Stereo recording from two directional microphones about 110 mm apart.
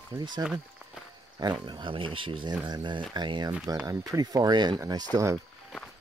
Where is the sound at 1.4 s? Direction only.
40° right (ahead or behind).